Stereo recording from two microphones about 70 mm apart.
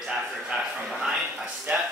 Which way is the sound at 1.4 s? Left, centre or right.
Centre.